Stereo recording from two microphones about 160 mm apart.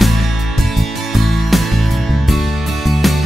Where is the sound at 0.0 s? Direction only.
Centre (ahead or behind).